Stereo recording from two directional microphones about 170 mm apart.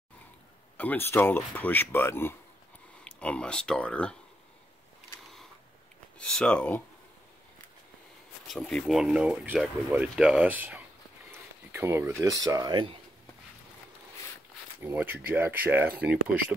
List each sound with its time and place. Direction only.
0.7 s speech: 10° left (ahead or behind)
5.2 s a sound: centre (ahead or behind)
6.1 s speech: 5° left (ahead or behind)
8.5 s speech: 5° left (ahead or behind); by 12.9 s 25° right (ahead or behind)
14.8 s speech: 10° right (ahead or behind)